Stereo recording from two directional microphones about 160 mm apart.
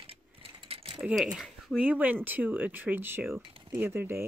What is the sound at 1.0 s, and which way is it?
Speech, 5° right (ahead or behind).